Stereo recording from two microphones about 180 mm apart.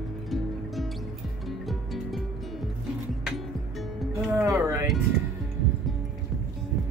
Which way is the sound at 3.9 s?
Centre (ahead or behind).